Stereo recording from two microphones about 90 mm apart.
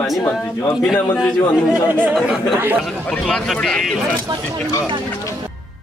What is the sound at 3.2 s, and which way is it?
Speech, 5° left (ahead or behind).